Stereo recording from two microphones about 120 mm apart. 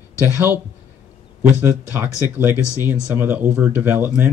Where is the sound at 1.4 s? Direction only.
15° right (ahead or behind).